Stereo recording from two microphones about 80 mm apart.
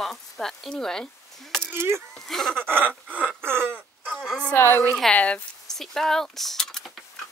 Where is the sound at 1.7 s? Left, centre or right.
Right.